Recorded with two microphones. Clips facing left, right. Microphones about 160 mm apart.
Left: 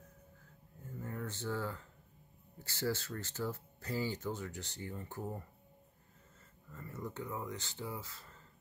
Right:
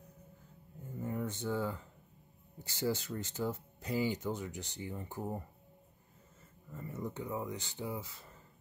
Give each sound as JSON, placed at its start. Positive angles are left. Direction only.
{"t": 0.8, "sound": "a sound", "side_deg": -15}
{"t": 2.6, "sound": "speech", "side_deg": -15}
{"t": 6.7, "sound": "speech", "side_deg": -15}